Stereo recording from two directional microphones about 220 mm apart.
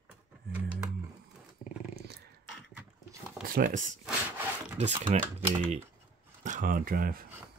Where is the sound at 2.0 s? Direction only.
45° right (ahead or behind).